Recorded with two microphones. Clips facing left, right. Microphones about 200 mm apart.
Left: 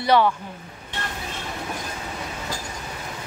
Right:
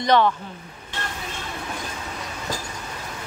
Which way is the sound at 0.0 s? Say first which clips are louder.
Even; 10° left (ahead or behind).